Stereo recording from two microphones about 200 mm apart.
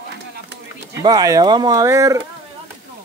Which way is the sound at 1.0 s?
20° right (ahead or behind).